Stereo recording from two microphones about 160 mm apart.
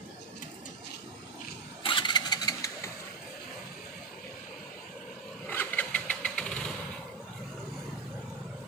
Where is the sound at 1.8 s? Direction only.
30° left (ahead or behind).